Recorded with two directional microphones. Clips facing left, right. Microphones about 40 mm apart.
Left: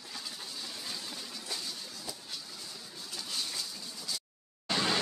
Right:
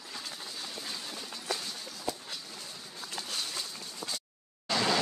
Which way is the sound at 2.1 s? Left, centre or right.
Right.